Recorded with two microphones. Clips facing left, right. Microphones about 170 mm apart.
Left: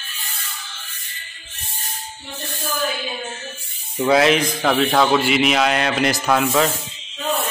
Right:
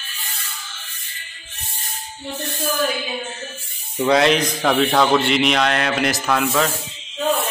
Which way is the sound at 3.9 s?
Centre (ahead or behind).